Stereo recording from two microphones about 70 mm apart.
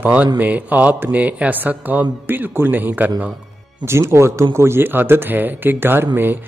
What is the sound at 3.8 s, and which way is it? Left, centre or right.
A man's voice, right.